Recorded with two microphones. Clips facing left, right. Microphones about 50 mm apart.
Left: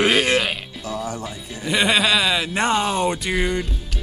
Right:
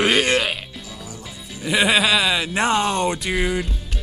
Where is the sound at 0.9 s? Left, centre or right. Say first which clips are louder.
Left 9 dB; left.